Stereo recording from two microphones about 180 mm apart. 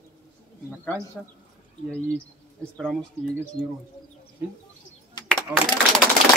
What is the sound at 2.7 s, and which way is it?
Speech, 5° left (ahead or behind).